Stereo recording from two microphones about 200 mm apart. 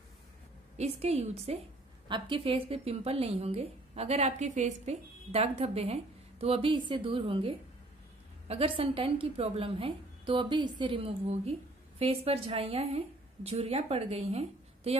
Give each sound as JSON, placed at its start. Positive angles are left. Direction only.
{"t": 0.7, "sound": "speech", "side_deg": -30}